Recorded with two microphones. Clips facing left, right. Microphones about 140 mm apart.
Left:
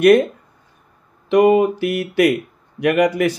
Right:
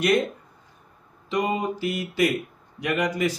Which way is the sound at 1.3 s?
65° left (ahead or behind).